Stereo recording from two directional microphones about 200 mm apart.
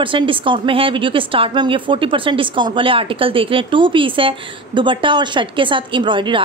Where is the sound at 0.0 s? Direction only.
25° right (ahead or behind).